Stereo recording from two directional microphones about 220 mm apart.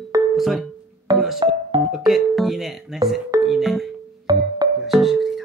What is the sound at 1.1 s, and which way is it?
Music, centre (ahead or behind).